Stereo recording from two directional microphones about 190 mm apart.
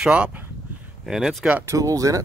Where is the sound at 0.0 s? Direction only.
5° right (ahead or behind).